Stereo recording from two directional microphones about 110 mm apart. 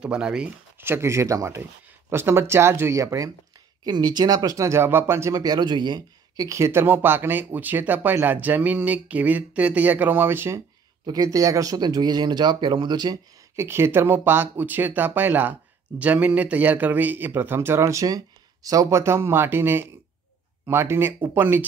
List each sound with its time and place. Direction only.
0.0 s speech: 10° right (ahead or behind)
0.7 s speech: 20° right (ahead or behind)
3.8 s speech: 40° right (ahead or behind); by 10.6 s 20° right (ahead or behind)
11.1 s speech: 30° right (ahead or behind)
13.6 s speech: 25° right (ahead or behind)